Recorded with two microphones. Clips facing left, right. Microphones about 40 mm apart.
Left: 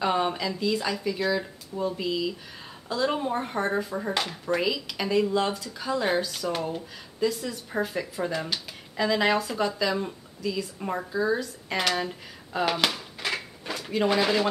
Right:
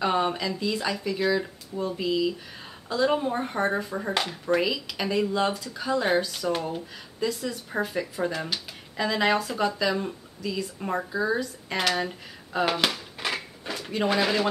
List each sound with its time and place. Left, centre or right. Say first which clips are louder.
0.0 s speech: right 1 dB; centre